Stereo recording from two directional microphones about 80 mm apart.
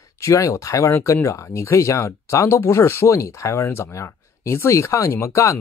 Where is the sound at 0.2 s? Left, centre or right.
Left.